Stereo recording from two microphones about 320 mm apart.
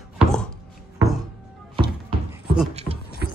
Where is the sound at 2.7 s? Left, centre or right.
Centre.